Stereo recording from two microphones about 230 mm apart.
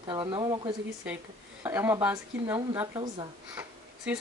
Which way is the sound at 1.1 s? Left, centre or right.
Centre.